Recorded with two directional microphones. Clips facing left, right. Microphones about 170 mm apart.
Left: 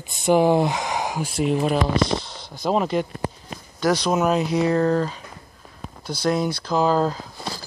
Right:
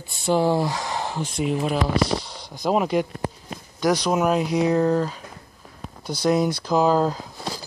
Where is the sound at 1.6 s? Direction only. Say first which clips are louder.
Left 1 dB; 10° right (ahead or behind).